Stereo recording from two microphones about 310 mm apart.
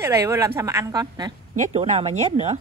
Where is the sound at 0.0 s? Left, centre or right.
Centre.